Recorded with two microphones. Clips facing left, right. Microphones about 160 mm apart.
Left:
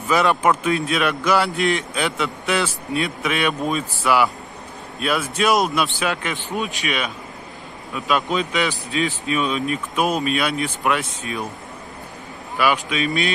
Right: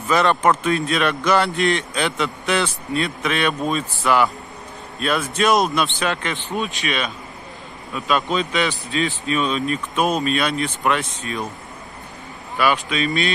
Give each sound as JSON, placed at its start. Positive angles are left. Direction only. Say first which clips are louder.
{"t": 0.1, "sound": "a man's voice", "louder": "right 1 dB", "side_deg": 10}
{"t": 12.5, "sound": "a man's voice", "louder": "even", "side_deg": 10}